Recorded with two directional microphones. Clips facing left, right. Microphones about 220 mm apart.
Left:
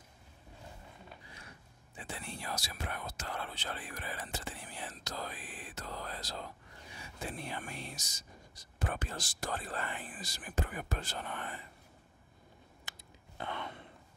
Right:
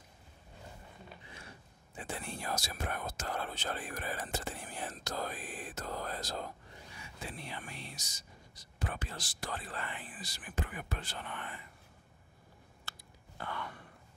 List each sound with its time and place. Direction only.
2.0 s speech: 50° right (ahead or behind)
7.2 s speech: 50° left (ahead or behind)
12.9 s a sound: 15° left (ahead or behind)
13.4 s gasp: 20° left (ahead or behind)